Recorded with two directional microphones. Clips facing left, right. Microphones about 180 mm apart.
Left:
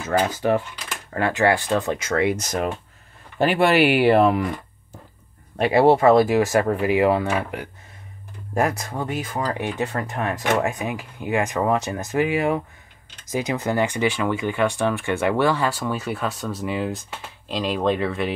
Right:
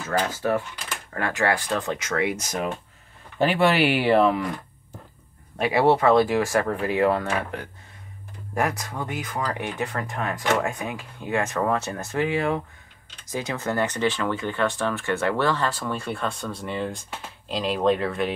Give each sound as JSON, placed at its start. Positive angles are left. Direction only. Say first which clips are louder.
{"t": 0.0, "sound": "speech", "louder": "left 4 dB", "side_deg": 20}
{"t": 3.3, "sound": "speech", "louder": "left 3 dB", "side_deg": 50}
{"t": 5.9, "sound": "speech", "louder": "left 3 dB", "side_deg": 25}
{"t": 6.9, "sound": "speech", "louder": "left 2 dB", "side_deg": 10}
{"t": 8.5, "sound": "speech", "louder": "left 3 dB", "side_deg": 25}